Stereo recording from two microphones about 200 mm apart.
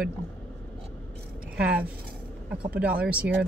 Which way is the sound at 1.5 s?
5° right (ahead or behind).